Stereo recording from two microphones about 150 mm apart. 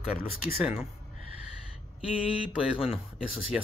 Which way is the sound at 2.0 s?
10° right (ahead or behind).